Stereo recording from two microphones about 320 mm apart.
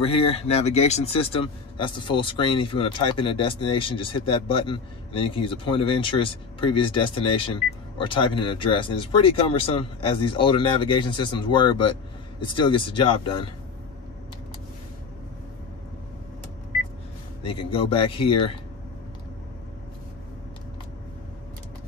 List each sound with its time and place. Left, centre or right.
0.3 s speech: centre
17.4 s speech: centre